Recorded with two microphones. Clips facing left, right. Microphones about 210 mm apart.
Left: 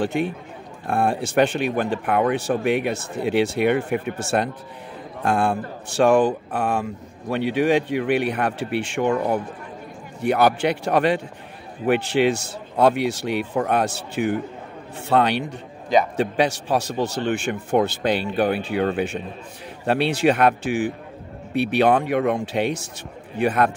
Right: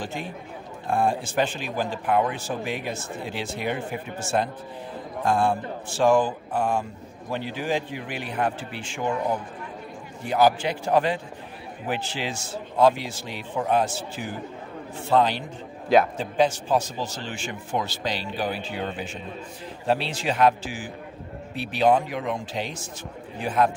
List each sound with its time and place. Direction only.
0.0 s speech: 65° left (ahead or behind)